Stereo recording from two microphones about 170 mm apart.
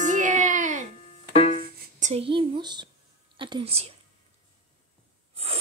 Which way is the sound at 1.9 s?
45° right (ahead or behind).